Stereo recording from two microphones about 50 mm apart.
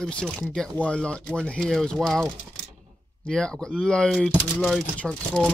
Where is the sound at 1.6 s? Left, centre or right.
Centre.